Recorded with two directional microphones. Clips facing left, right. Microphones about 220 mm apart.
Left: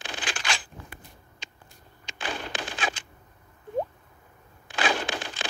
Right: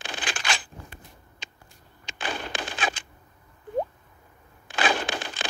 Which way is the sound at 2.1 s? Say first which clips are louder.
Right 1 dB; 55° right (ahead or behind).